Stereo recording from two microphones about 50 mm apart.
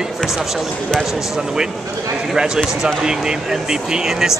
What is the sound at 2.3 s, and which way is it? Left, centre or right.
Speech, centre.